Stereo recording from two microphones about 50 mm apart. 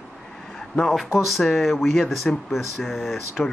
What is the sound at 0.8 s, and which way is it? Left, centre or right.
Speech, centre.